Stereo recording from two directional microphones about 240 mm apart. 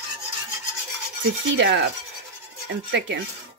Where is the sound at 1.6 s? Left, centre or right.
Right.